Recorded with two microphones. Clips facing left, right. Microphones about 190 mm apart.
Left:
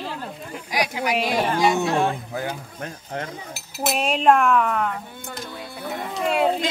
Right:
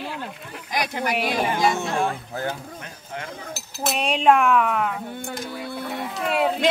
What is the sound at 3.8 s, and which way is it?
Speech, 5° left (ahead or behind).